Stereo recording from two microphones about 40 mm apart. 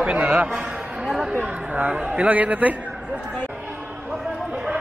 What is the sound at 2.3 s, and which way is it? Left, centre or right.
Speech, right.